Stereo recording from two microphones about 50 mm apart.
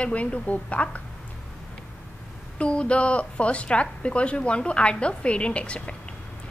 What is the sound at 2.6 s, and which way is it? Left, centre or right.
A woman's voice, left.